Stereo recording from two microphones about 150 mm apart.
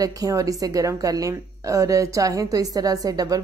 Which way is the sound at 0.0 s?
25° right (ahead or behind).